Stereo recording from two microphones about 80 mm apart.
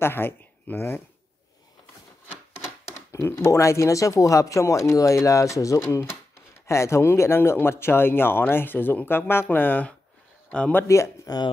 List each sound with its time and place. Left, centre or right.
0.0 s speech: left
3.1 s speech: left
10.7 s speech: left
11.2 s speech: left